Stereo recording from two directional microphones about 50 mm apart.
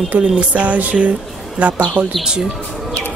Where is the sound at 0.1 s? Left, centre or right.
Right.